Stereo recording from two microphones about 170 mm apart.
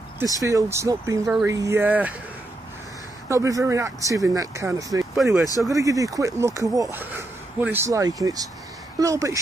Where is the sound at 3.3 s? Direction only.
20° right (ahead or behind).